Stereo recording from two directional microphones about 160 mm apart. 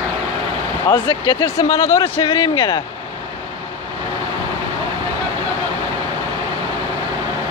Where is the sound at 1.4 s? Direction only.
20° left (ahead or behind).